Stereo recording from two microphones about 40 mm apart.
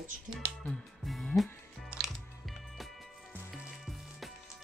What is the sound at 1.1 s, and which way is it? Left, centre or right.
Speech, centre.